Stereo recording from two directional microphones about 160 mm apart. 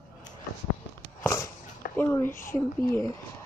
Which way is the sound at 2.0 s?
15° left (ahead or behind).